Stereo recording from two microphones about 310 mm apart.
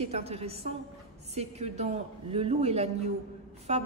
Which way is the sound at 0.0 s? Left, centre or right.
Centre.